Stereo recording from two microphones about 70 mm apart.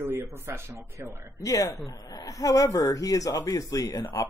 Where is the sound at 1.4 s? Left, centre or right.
Left.